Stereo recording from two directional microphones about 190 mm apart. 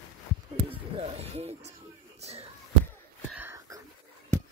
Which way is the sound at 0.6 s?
30° right (ahead or behind).